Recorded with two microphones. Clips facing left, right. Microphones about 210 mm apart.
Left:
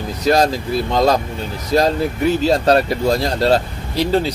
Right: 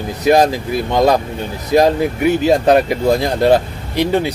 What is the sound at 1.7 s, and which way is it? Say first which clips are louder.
Speech: right 4 dB; 15° right (ahead or behind).